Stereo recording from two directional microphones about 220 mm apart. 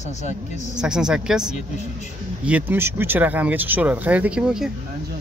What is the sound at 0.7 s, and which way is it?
Speech, 5° right (ahead or behind).